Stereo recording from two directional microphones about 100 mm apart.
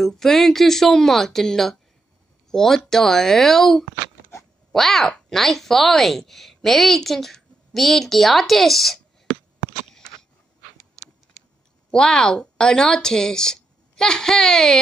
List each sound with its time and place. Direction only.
0.0 s speech: 5° left (ahead or behind)
10.8 s a sound: centre (ahead or behind)
11.9 s speech: 10° left (ahead or behind)